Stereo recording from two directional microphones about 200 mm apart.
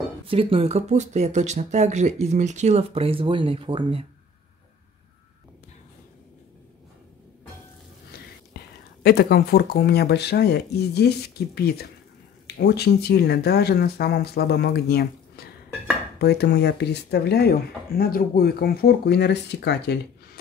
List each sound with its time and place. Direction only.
0.3 s speech: 25° right (ahead or behind)
8.5 s a sound: 50° left (ahead or behind)
9.0 s speech: 55° left (ahead or behind)